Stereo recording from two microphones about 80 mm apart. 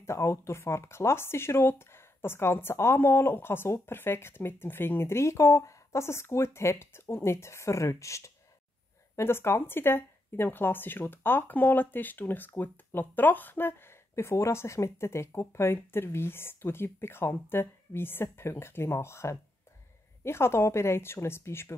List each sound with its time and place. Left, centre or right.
0.0 s speech: left